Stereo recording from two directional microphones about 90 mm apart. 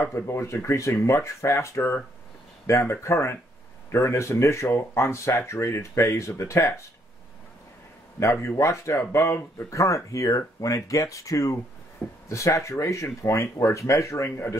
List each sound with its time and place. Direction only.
0.0 s speech: 30° left (ahead or behind)
8.2 s speech: 30° left (ahead or behind)